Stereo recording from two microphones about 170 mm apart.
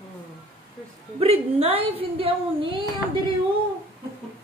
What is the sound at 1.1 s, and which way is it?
A woman's voice, 35° right (ahead or behind).